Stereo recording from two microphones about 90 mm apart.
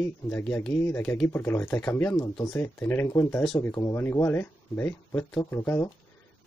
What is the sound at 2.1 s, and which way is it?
Speech, 45° left (ahead or behind).